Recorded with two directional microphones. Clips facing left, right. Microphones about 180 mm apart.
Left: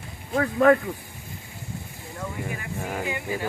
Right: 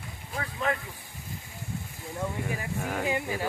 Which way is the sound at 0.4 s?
50° left (ahead or behind).